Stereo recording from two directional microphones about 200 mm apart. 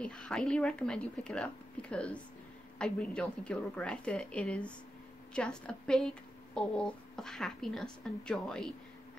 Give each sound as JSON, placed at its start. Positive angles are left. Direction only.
{"t": 0.0, "sound": "a woman's voice", "side_deg": 5}